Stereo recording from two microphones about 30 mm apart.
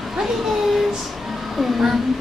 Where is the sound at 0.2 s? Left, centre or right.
Centre.